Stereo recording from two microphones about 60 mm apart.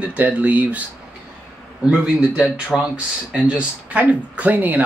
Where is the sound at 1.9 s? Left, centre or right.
Centre.